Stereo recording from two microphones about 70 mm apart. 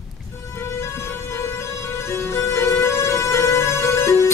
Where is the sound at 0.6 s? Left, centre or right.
Left.